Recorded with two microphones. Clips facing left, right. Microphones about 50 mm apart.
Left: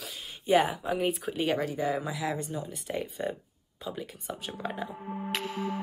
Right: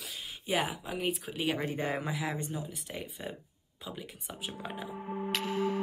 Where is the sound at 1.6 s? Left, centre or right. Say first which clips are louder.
Left 3 dB; right.